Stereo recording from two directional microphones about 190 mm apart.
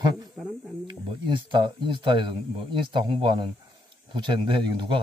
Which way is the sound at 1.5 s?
25° right (ahead or behind).